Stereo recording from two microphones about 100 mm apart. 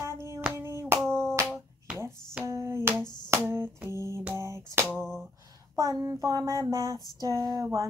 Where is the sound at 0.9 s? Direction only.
5° left (ahead or behind).